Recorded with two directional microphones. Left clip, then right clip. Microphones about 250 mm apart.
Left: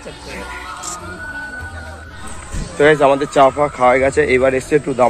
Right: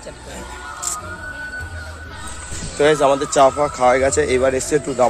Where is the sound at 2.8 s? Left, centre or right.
Centre.